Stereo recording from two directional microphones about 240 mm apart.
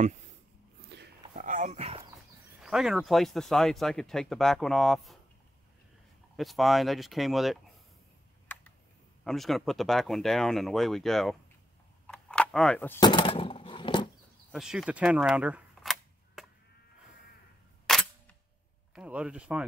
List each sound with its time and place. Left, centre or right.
0.8 s a sound: right
1.3 s a sound: right
2.6 s speech: centre
6.3 s speech: centre
9.2 s speech: centre
12.1 s a sound: centre; by 14.0 s left
14.5 s camera: centre
17.8 s single-lens reflex camera: centre
18.9 s speech: centre